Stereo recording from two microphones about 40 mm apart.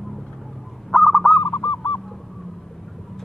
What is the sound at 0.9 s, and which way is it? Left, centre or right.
Owl, centre.